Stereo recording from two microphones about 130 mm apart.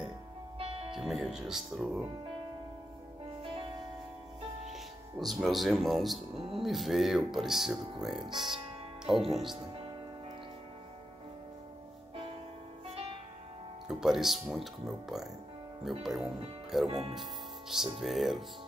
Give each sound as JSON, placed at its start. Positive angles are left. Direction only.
{"t": 0.6, "sound": "music", "side_deg": -50}
{"t": 0.9, "sound": "speech", "side_deg": -5}
{"t": 5.2, "sound": "speech", "side_deg": 0}
{"t": 13.8, "sound": "speech", "side_deg": -5}